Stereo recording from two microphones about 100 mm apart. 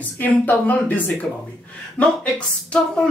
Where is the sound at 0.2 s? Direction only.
15° left (ahead or behind).